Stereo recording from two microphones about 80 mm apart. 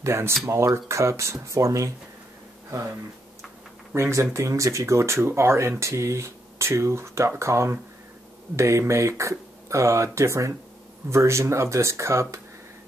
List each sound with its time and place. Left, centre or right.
0.0 s speech: right
3.9 s speech: right